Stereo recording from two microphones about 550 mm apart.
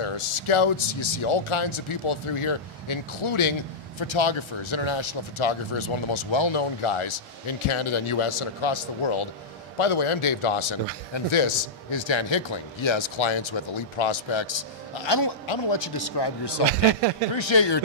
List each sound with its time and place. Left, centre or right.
0.0 s speech: left
15.0 s speech: left
15.4 s a man's voice: left